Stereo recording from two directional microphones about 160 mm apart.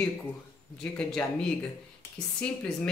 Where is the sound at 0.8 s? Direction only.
5° left (ahead or behind).